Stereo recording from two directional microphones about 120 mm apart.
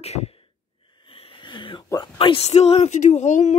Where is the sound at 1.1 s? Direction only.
50° left (ahead or behind).